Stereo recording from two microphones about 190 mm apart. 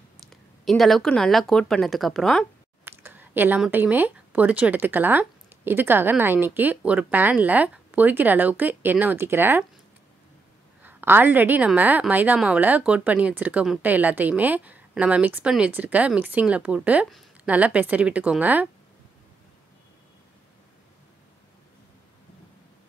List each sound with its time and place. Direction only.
0.3 s speech: centre (ahead or behind)
2.8 s a woman's voice: 10° right (ahead or behind)
10.8 s a woman's voice: 10° right (ahead or behind)